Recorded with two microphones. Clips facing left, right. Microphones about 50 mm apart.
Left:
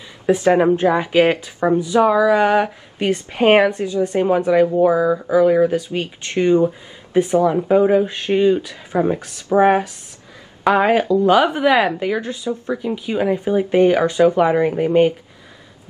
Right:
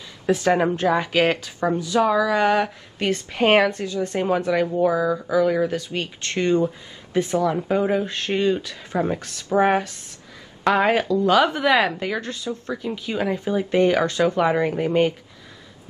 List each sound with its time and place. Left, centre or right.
0.3 s speech: centre
7.5 s speech: centre
11.1 s speech: left
14.5 s speech: centre